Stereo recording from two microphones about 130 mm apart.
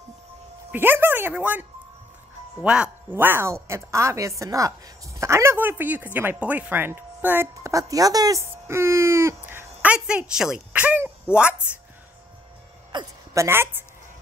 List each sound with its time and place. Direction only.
0.7 s speech: 15° right (ahead or behind)
12.9 s a woman's voice: 25° right (ahead or behind)